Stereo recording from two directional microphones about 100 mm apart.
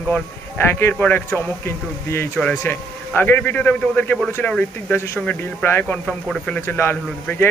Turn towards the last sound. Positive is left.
turn(degrees=20)  # may be behind; listen again after turning